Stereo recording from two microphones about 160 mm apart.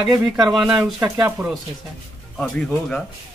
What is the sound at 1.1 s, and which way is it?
Speech, 15° right (ahead or behind).